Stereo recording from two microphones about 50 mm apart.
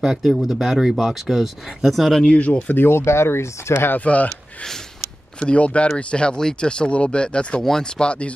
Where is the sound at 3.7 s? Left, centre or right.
Left.